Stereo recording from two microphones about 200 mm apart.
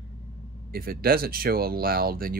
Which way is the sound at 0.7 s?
50° right (ahead or behind).